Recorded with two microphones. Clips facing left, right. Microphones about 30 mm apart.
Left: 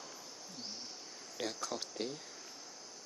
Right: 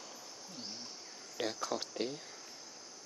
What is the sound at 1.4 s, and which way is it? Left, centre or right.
Speech, centre.